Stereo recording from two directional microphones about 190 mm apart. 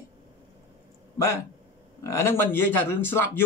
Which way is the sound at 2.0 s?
15° left (ahead or behind).